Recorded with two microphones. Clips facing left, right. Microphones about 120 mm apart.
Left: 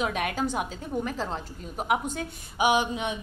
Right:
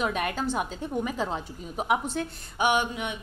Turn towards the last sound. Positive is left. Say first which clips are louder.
# left 1 dB
turn(degrees=25)  # may be behind; listen again after turning